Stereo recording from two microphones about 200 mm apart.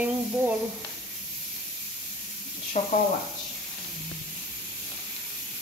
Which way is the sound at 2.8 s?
40° left (ahead or behind).